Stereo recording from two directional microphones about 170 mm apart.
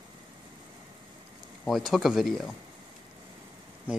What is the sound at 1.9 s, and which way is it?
Speech, centre (ahead or behind).